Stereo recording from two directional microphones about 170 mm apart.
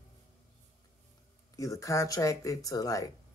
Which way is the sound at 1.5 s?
20° left (ahead or behind).